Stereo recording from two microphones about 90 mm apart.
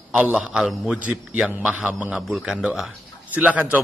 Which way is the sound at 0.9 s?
15° right (ahead or behind).